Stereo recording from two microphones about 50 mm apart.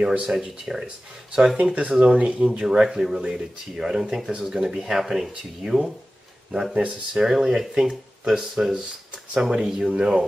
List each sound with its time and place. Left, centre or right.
0.3 s speech: centre
1.6 s speech: right